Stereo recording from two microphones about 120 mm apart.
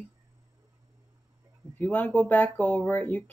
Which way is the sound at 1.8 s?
15° left (ahead or behind).